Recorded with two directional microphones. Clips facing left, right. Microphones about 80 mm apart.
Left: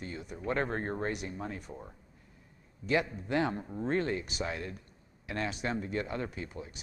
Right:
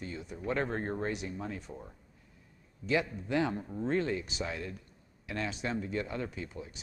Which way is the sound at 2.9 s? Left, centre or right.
Left.